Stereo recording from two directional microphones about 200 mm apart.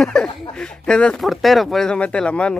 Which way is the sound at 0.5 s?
5° left (ahead or behind).